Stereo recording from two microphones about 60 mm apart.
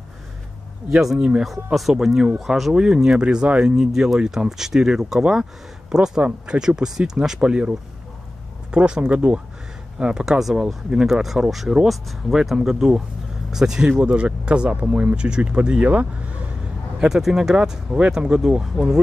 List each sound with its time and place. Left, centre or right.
0.8 s speech: centre
8.7 s speech: centre
17.0 s speech: centre